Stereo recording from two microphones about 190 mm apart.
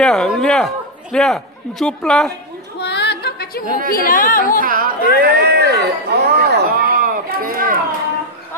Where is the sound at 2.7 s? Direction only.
60° left (ahead or behind).